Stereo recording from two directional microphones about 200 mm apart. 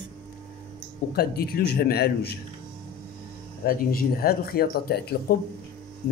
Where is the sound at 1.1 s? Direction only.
50° left (ahead or behind).